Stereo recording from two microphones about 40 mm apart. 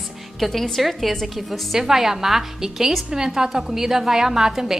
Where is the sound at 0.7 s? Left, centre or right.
Centre.